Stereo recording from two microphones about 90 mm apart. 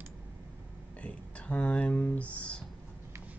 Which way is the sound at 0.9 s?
15° left (ahead or behind).